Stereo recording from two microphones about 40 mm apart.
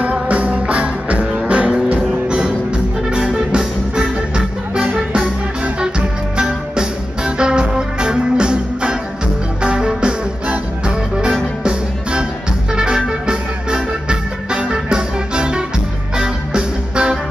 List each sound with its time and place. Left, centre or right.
0.0 s music: right
5.8 s music: right
11.6 s music: right